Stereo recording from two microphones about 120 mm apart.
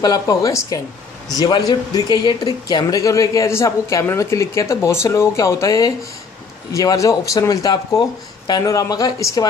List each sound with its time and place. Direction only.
0.0 s speech: 30° left (ahead or behind)